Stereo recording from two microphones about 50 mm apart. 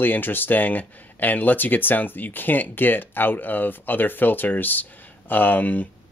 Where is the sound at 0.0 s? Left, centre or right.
Left.